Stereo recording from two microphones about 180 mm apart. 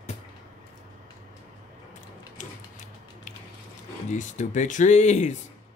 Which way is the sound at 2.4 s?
45° left (ahead or behind).